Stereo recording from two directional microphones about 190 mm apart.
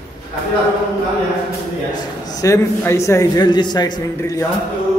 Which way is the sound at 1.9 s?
20° left (ahead or behind).